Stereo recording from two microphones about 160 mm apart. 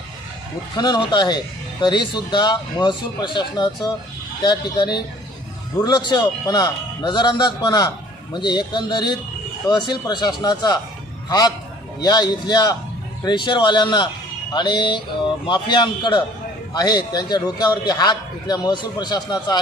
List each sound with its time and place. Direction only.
0.7 s a man's voice: 30° left (ahead or behind)